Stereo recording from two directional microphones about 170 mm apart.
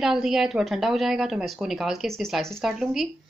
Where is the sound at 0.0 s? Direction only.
5° right (ahead or behind).